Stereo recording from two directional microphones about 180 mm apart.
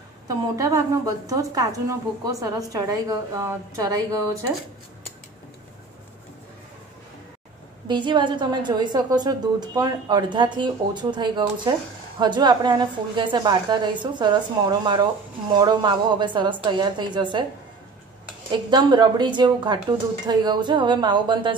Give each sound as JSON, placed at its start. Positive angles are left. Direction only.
{"t": 0.3, "sound": "a woman's voice", "side_deg": -20}
{"t": 7.9, "sound": "a woman's voice", "side_deg": -25}
{"t": 18.7, "sound": "a woman's voice", "side_deg": -25}